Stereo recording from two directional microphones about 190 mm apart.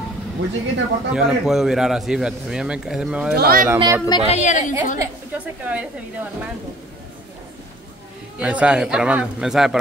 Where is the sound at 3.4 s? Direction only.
50° right (ahead or behind).